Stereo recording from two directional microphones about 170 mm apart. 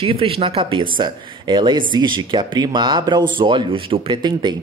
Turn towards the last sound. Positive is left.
turn(degrees=-25)  # may be behind; listen again after turning